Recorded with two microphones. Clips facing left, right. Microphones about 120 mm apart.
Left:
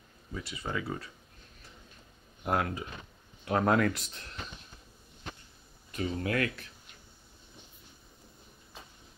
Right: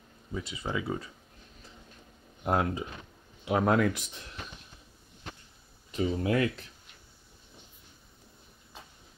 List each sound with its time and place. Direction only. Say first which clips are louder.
0.3 s speech: right 2 dB; 15° right (ahead or behind)
2.4 s speech: right 2 dB; 20° right (ahead or behind)
3.4 s speech: right 1 dB; 5° right (ahead or behind)
5.9 s speech: right 4 dB; 20° right (ahead or behind)